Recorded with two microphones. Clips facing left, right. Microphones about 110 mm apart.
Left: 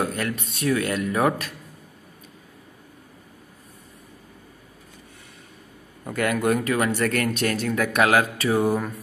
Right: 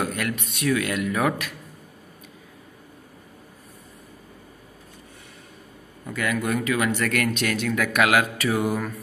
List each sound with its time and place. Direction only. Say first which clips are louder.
0.0 s speech: left 1 dB; 30° left (ahead or behind)
6.0 s speech: left 4 dB; 50° left (ahead or behind); by 9.0 s 25° left (ahead or behind)